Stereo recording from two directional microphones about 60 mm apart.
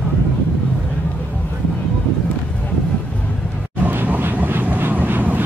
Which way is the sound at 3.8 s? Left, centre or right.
Right.